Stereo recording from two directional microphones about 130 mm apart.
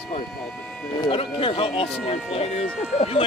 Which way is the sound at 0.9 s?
40° left (ahead or behind).